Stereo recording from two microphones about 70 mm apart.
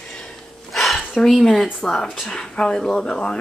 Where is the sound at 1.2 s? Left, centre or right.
Centre.